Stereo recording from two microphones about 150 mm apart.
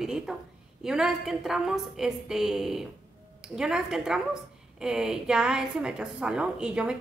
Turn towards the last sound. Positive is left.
turn(degrees=-5)  # may be behind; listen again after turning